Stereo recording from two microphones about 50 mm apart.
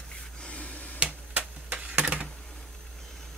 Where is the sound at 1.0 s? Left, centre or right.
Right.